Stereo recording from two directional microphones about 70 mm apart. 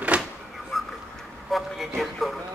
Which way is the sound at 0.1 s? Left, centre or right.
Right.